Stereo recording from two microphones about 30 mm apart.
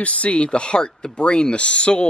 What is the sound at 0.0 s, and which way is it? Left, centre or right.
Speech, left.